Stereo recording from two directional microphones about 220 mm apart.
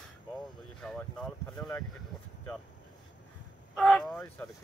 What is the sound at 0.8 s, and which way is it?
Speech, 5° left (ahead or behind).